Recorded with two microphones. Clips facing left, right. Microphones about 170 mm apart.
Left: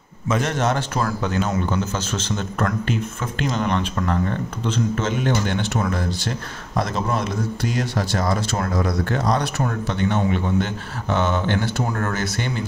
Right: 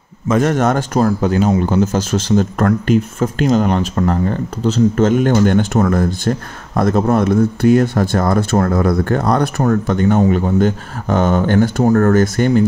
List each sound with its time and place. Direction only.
0.3 s speech: 50° right (ahead or behind)